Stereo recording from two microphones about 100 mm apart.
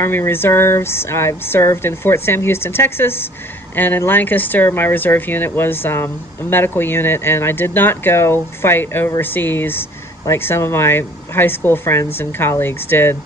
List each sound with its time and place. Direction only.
0.0 s speech: 25° left (ahead or behind)